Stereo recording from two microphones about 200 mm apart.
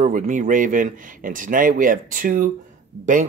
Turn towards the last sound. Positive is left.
turn(degrees=-40)  # may be behind; listen again after turning